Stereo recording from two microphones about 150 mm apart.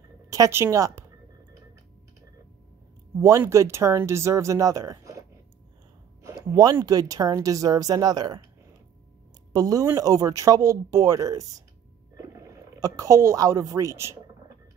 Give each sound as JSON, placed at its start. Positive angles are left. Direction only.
{"t": 0.3, "sound": "speech", "side_deg": -20}
{"t": 3.2, "sound": "speech", "side_deg": -20}
{"t": 6.2, "sound": "speech", "side_deg": -25}
{"t": 9.5, "sound": "speech", "side_deg": -25}